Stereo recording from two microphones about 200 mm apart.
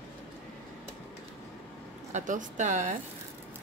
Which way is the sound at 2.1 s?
40° right (ahead or behind).